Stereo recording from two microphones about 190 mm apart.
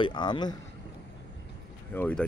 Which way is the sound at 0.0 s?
25° left (ahead or behind).